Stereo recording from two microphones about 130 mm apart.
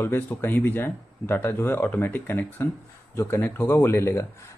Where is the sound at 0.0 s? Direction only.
15° left (ahead or behind).